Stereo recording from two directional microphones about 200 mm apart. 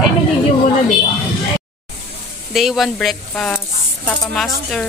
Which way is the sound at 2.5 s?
Centre (ahead or behind).